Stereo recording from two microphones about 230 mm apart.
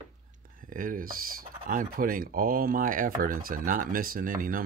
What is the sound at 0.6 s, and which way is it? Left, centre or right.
Speech, right.